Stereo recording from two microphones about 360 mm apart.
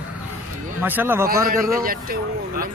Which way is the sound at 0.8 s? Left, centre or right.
Centre.